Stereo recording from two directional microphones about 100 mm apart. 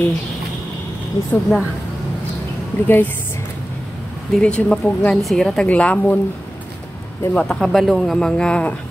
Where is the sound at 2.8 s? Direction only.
20° left (ahead or behind).